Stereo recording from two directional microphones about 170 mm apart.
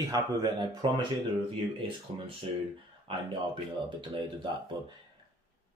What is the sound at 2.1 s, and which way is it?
Speech, 30° right (ahead or behind).